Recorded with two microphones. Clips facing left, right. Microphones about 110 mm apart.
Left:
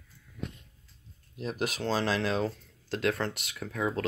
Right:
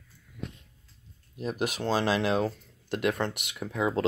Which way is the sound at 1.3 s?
5° right (ahead or behind).